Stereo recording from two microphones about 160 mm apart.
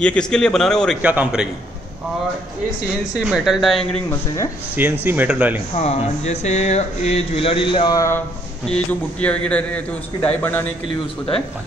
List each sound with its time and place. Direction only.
0.0 s a man's voice: 5° left (ahead or behind)
1.0 s speech: 10° right (ahead or behind)
3.3 s a man's voice: centre (ahead or behind)
5.0 s speech: 10° right (ahead or behind)
5.8 s speech: 45° left (ahead or behind); by 8.2 s 20° left (ahead or behind)
8.6 s a man's voice: 5° left (ahead or behind)